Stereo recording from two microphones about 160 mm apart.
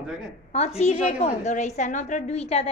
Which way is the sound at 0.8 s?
45° left (ahead or behind).